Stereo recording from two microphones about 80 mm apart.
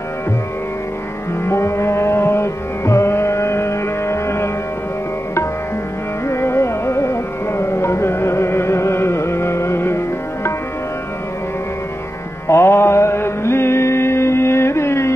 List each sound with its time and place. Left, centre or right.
1.4 s music: left
6.2 s music: left
12.4 s music: left